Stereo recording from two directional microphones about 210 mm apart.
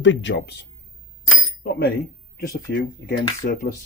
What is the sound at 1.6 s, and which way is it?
Speech, 50° left (ahead or behind).